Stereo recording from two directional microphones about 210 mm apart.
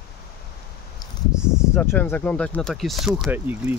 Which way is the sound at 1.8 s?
10° left (ahead or behind).